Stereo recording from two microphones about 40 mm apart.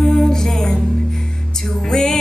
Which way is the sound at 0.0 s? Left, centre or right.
Centre.